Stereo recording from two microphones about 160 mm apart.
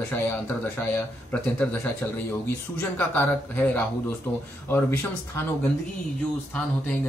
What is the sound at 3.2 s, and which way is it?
Speech, 10° left (ahead or behind).